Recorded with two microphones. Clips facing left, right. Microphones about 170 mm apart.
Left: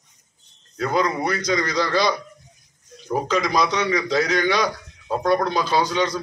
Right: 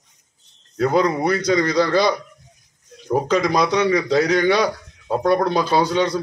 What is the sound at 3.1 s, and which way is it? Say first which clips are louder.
A man's voice: right 4 dB; 30° right (ahead or behind).